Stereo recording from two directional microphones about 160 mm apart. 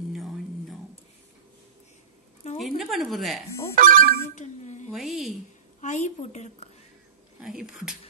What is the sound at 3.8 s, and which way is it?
Speech, 60° right (ahead or behind).